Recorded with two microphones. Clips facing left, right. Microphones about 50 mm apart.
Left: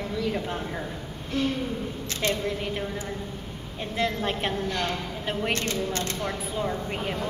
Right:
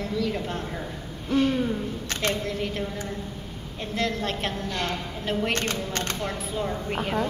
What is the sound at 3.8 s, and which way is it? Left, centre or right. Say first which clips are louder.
A woman's voice: even; centre.